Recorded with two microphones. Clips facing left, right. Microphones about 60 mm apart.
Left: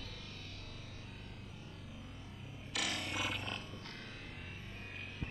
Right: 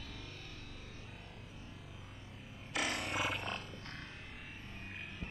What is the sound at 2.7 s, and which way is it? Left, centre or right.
Music, right.